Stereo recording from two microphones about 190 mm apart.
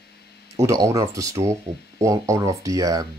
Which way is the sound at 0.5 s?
15° right (ahead or behind).